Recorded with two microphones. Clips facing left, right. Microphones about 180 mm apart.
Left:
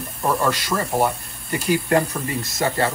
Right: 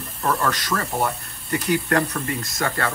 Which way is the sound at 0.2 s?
10° left (ahead or behind).